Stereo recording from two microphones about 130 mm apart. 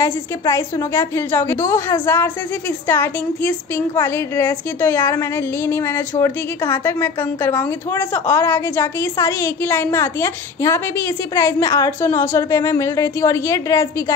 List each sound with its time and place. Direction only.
0.0 s a woman's voice: 20° left (ahead or behind)